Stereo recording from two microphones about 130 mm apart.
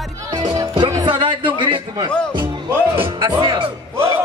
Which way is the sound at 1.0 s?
40° right (ahead or behind).